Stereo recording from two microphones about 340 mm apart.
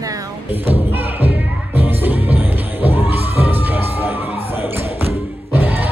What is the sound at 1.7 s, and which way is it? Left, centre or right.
Music, centre.